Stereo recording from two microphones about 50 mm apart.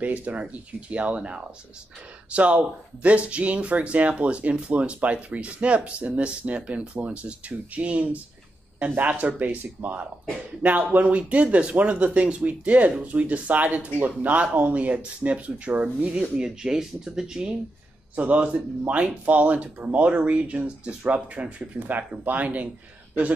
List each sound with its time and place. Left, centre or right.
0.0 s speech: right; by 17.6 s centre
18.1 s speech: right